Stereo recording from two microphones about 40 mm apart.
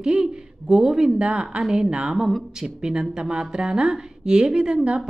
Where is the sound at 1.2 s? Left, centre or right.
Right.